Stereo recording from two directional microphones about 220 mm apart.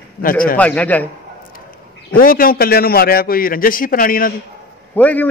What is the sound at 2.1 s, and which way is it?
A man's voice, 40° left (ahead or behind).